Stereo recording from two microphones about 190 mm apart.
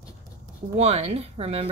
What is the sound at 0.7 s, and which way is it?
Speech, 35° right (ahead or behind).